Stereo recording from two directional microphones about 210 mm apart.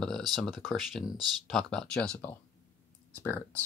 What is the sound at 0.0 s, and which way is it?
Speech, centre (ahead or behind).